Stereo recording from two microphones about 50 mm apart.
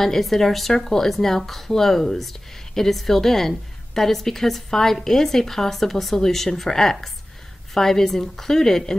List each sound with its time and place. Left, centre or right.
0.0 s a woman's voice: centre